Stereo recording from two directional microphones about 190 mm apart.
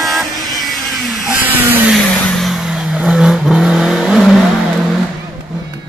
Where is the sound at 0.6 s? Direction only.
Centre (ahead or behind).